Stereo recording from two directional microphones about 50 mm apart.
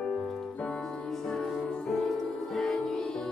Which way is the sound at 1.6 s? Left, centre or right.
Left.